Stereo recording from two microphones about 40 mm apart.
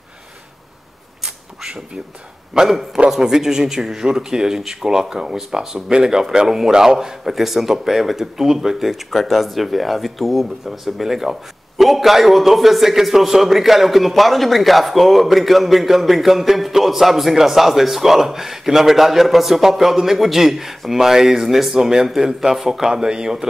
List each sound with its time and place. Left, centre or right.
2.6 s a man's voice: right